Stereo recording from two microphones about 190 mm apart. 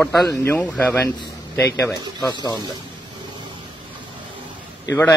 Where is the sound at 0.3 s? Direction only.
15° left (ahead or behind).